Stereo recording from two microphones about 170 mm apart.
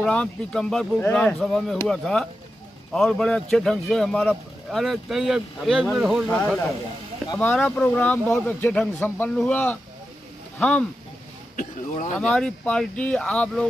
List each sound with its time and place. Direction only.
0.0 s speech: 5° left (ahead or behind)
6.2 s speech: 10° left (ahead or behind)
11.5 s speech: 50° left (ahead or behind)
12.2 s speech: 5° left (ahead or behind)